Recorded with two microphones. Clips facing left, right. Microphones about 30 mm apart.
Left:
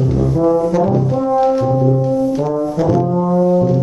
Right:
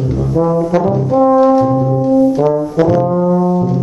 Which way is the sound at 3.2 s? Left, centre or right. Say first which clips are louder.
Right 1 dB; centre.